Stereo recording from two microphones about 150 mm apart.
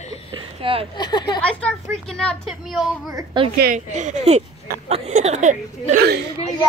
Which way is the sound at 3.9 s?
50° right (ahead or behind).